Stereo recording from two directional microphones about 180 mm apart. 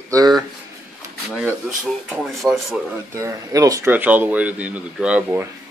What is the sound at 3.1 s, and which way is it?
Speech, 15° right (ahead or behind).